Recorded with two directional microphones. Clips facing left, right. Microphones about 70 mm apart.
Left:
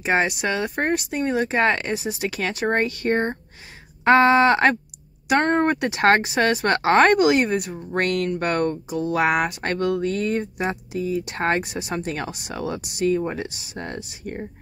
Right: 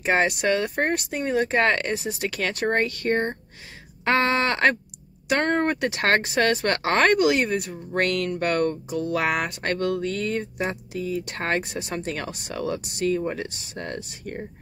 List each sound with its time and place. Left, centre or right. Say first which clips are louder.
0.0 s speech: even; centre